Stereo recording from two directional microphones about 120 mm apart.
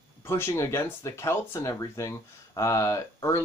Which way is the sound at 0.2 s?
20° left (ahead or behind).